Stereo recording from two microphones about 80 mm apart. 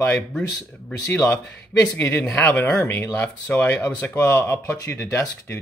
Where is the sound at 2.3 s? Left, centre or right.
Centre.